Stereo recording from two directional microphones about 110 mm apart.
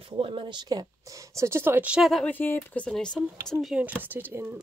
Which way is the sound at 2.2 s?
20° left (ahead or behind).